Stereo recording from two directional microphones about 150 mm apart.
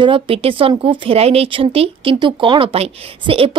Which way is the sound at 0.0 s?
35° right (ahead or behind).